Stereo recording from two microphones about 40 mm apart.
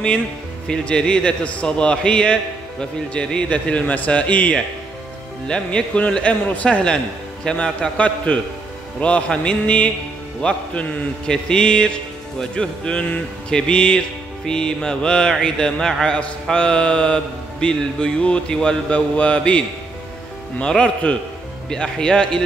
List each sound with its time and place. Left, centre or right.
0.7 s a man's voice: left
5.5 s a man's voice: left
6.4 s a man's voice: left
7.4 s a man's voice: left
11.2 s a man's voice: left
16.1 s a man's voice: left
18.9 s a man's voice: left
20.6 s a man's voice: left